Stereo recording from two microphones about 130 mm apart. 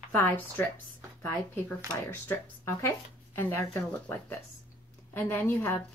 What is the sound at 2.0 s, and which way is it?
Speech, 20° left (ahead or behind).